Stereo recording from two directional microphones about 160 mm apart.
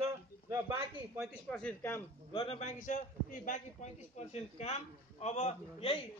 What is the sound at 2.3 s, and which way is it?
A man's voice, 40° left (ahead or behind).